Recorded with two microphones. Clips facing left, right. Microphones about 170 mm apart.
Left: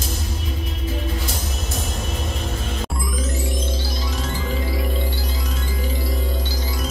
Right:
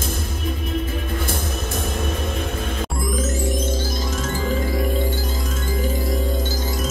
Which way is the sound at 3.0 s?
45° right (ahead or behind).